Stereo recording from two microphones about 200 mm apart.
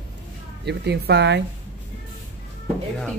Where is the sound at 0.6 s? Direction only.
55° right (ahead or behind).